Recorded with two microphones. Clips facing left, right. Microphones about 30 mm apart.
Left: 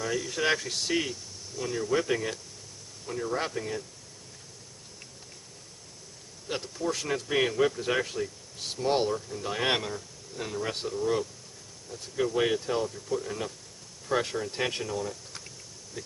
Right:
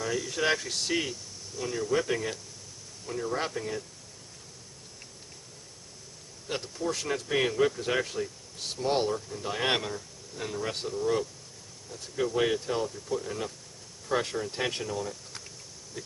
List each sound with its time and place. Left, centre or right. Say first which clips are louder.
0.0 s speech: even; centre
6.5 s speech: left 1 dB; centre